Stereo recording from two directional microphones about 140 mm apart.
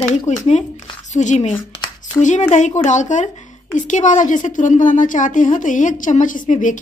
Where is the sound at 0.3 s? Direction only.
55° left (ahead or behind).